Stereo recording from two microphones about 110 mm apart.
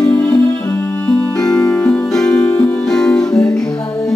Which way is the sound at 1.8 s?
15° left (ahead or behind).